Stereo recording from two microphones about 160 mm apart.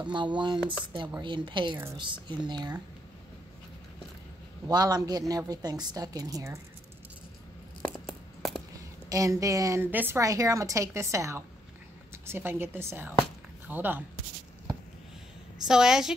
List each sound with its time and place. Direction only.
0.0 s speech: 30° right (ahead or behind)
4.6 s speech: 25° right (ahead or behind)
7.9 s a sound: centre (ahead or behind)
9.1 s speech: 20° right (ahead or behind)
15.6 s a woman's voice: 5° right (ahead or behind)